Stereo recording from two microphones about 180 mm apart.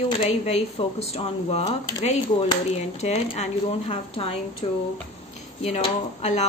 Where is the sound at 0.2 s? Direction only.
35° left (ahead or behind).